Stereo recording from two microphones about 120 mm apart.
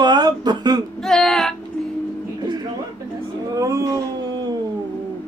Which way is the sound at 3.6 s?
30° right (ahead or behind).